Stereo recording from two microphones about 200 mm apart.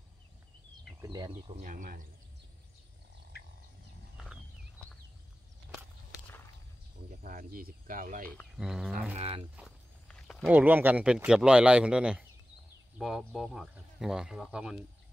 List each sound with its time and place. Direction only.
1.0 s speech: 20° right (ahead or behind)
1.3 s speech: 35° right (ahead or behind)
3.3 s bird: 50° left (ahead or behind)
7.2 s speech: 45° right (ahead or behind)
8.5 s speech: centre (ahead or behind)
9.1 s speech: 30° right (ahead or behind)
10.0 s a sound: 5° left (ahead or behind)
10.5 s speech: 10° right (ahead or behind)